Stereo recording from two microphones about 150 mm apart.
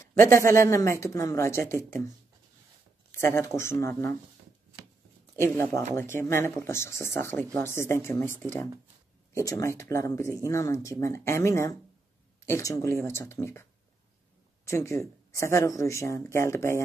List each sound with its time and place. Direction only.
0.3 s speech: 20° left (ahead or behind)
3.1 s speech: 15° left (ahead or behind)
5.4 s speech: 20° left (ahead or behind)
9.4 s speech: 20° left (ahead or behind)